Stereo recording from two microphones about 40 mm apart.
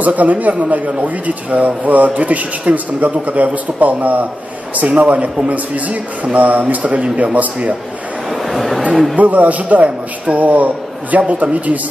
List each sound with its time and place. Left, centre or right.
0.0 s a man's voice: right
8.3 s a sound: centre
9.1 s a man's voice: right
9.8 s speech: right
10.4 s a man's voice: right